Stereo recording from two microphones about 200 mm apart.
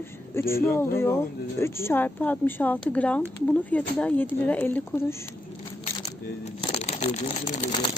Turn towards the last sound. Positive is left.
turn(degrees=35)  # may be behind; listen again after turning